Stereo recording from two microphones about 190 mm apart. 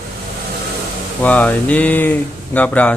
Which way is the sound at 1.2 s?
10° left (ahead or behind).